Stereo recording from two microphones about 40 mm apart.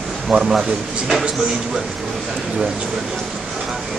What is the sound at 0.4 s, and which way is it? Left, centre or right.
Music, centre.